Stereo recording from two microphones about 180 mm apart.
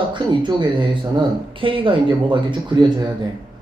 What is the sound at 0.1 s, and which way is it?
Speech, 25° right (ahead or behind).